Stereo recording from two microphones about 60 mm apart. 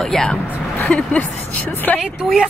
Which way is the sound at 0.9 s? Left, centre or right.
Centre.